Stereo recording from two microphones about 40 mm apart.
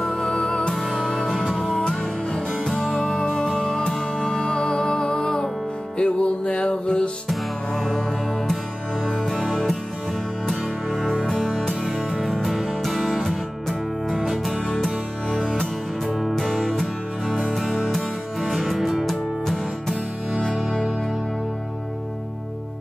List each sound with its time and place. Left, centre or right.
0.1 s music: left
7.7 s music: centre
9.2 s music: centre
12.4 s music: centre
16.1 s music: centre
16.4 s music: centre
16.8 s music: centre
19.4 s music: centre